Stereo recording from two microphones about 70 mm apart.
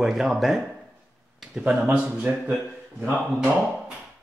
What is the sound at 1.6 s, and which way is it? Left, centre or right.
Speech, centre.